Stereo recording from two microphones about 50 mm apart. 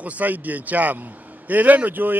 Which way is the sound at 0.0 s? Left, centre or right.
Right.